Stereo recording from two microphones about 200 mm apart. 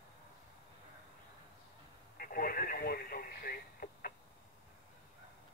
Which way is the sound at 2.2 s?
45° left (ahead or behind).